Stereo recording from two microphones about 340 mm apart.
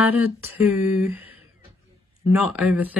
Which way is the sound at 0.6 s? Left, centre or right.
Centre.